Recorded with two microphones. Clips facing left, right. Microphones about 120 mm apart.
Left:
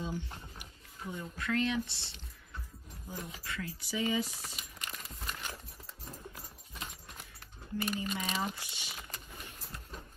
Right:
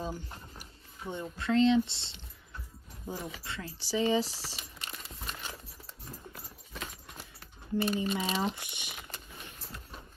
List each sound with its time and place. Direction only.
0.0 s music: 40° right (ahead or behind)
1.1 s speech: 25° right (ahead or behind)
7.7 s speech: 30° right (ahead or behind)